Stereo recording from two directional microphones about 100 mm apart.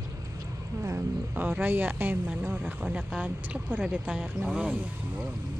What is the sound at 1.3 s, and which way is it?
Speech, 20° right (ahead or behind).